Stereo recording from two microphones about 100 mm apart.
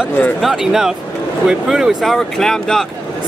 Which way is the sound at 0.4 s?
5° right (ahead or behind).